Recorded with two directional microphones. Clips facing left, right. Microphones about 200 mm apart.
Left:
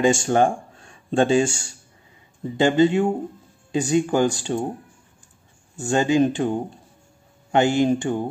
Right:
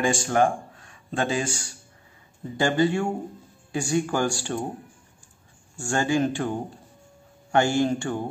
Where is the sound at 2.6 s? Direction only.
20° left (ahead or behind).